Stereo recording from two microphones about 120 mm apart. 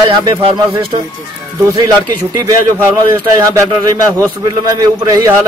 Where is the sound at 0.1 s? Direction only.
40° right (ahead or behind).